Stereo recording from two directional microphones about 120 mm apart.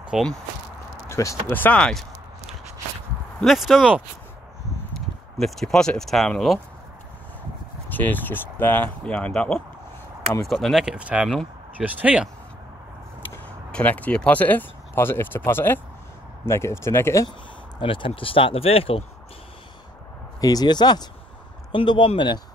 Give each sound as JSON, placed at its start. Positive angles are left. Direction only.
{"t": 0.1, "sound": "speech", "side_deg": -5}
{"t": 1.0, "sound": "speech", "side_deg": 25}
{"t": 3.4, "sound": "speech", "side_deg": -5}
{"t": 7.9, "sound": "speech", "side_deg": 15}
{"t": 13.7, "sound": "speech", "side_deg": 10}
{"t": 17.7, "sound": "speech", "side_deg": 45}
{"t": 20.3, "sound": "speech", "side_deg": 30}